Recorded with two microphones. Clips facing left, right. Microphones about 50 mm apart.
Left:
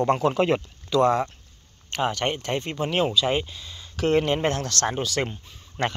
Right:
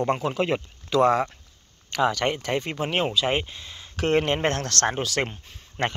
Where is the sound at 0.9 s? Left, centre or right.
Right.